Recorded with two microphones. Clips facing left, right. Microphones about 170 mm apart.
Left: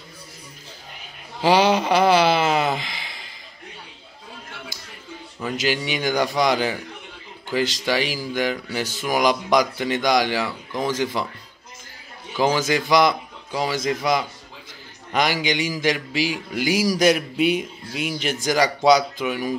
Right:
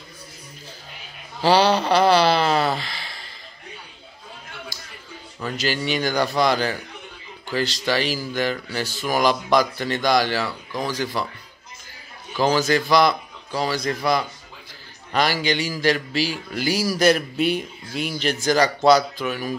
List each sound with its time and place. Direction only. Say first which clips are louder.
1.4 s a sound: even; 15° left (ahead or behind)
5.4 s speech: left 1 dB; 15° left (ahead or behind)
12.4 s speech: right 1 dB; 15° left (ahead or behind)